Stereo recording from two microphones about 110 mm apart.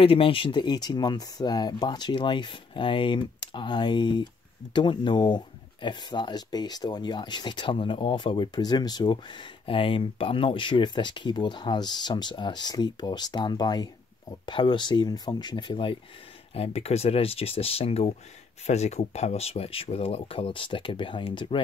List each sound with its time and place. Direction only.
0.0 s speech: 55° left (ahead or behind)
16.5 s speech: 65° left (ahead or behind)
18.7 s speech: 85° left; by 21.5 s 50° left (ahead or behind)